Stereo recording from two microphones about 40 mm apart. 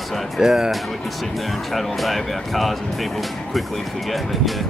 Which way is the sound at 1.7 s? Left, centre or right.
Centre.